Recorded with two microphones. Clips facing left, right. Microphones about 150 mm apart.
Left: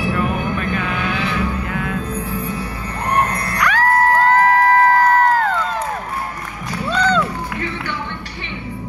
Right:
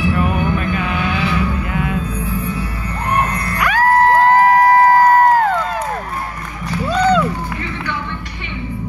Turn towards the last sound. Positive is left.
turn(degrees=-10)  # may be behind; listen again after turning